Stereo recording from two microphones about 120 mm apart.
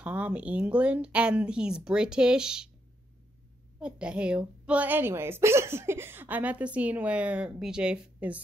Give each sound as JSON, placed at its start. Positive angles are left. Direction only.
{"t": 0.0, "sound": "a woman's voice", "side_deg": -10}
{"t": 3.8, "sound": "a woman's voice", "side_deg": -10}